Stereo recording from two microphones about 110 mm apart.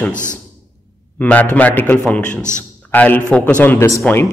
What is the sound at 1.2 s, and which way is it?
A man's voice, 15° left (ahead or behind).